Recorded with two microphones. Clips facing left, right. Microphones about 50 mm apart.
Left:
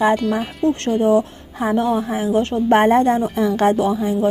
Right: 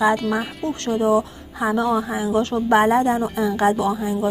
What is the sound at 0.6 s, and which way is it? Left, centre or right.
A woman's voice, left.